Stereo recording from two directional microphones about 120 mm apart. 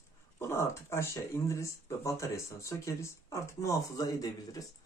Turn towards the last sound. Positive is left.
turn(degrees=30)  # may be behind; listen again after turning